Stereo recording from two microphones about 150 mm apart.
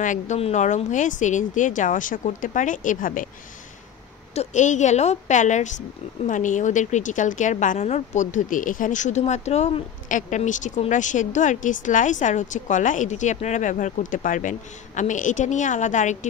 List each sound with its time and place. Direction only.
0.0 s a woman's voice: 60° left (ahead or behind)
4.3 s a woman's voice: 50° left (ahead or behind)